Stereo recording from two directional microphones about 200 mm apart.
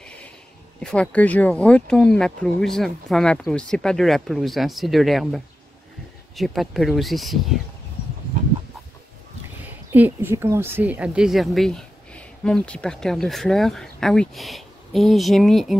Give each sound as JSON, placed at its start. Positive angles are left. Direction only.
{"t": 0.7, "sound": "speech", "side_deg": 5}
{"t": 9.8, "sound": "speech", "side_deg": -10}